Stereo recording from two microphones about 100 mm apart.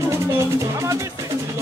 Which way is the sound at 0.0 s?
30° right (ahead or behind).